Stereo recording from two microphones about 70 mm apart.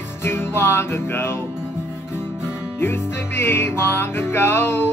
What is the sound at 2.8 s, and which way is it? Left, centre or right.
Music, left.